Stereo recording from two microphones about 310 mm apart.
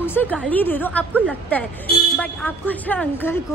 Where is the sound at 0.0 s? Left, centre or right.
Centre.